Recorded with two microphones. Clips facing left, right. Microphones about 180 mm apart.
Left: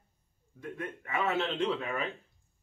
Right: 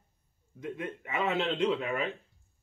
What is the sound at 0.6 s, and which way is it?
A man's voice, 20° right (ahead or behind).